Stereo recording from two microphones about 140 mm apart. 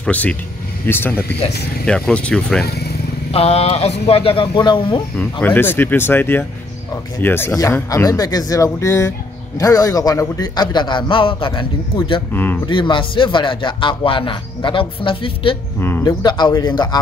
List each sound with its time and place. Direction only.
0.0 s speech: 10° left (ahead or behind)
3.3 s speech: 45° left (ahead or behind)
5.1 s speech: 10° left (ahead or behind); by 11.6 s 35° left (ahead or behind)
12.3 s speech: 15° left (ahead or behind)
12.6 s speech: 35° left (ahead or behind)
16.0 s speech: 30° left (ahead or behind)